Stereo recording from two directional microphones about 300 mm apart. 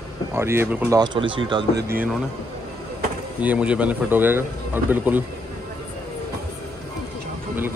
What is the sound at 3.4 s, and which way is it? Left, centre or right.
A man's voice, centre.